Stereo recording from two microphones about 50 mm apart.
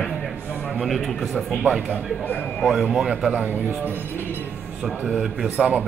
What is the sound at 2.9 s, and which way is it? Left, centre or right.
Speech, centre.